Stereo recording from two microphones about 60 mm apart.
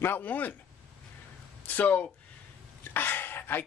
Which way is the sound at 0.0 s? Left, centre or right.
Left.